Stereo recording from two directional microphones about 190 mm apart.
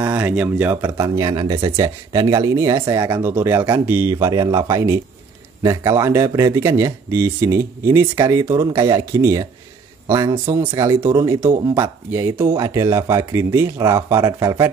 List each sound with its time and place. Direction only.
0.0 s speech: 15° right (ahead or behind)